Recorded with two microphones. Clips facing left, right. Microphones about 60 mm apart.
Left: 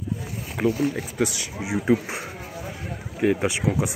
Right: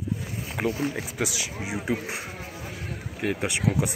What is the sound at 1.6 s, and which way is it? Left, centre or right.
Speech, centre.